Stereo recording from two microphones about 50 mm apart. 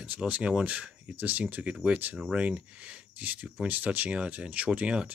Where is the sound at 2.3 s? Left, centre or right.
Right.